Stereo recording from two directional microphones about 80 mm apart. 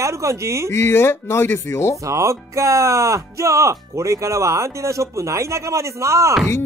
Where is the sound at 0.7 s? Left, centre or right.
Left.